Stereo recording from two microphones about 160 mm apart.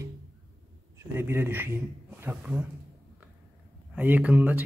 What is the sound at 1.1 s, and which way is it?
Speech, 15° right (ahead or behind).